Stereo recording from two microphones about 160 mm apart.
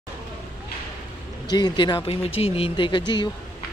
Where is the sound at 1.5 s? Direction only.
25° left (ahead or behind).